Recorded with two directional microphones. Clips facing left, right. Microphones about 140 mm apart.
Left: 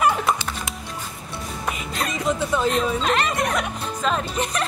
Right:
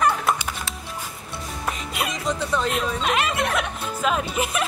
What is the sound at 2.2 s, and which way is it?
Speech, 5° left (ahead or behind).